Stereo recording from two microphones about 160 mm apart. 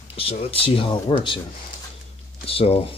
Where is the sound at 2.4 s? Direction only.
35° left (ahead or behind).